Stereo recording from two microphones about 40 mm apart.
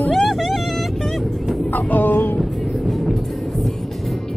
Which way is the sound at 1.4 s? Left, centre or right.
Centre.